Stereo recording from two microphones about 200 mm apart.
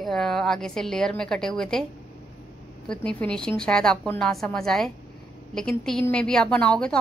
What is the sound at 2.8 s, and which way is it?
A woman's voice, 5° left (ahead or behind).